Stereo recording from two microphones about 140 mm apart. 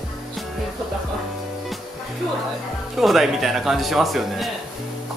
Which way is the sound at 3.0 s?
Centre (ahead or behind).